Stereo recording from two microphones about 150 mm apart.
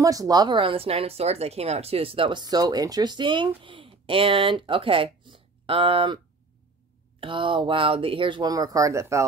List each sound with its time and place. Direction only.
0.0 s speech: 25° right (ahead or behind)
7.2 s speech: 35° right (ahead or behind)